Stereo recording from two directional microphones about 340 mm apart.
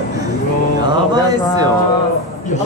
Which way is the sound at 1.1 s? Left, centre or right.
Centre.